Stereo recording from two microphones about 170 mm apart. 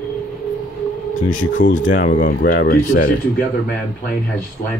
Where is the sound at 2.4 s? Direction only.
65° left (ahead or behind).